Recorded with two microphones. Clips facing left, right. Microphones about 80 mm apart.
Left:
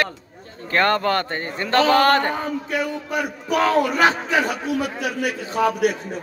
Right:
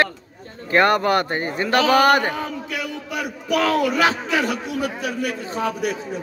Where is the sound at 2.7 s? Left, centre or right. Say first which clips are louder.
Left 4 dB; left.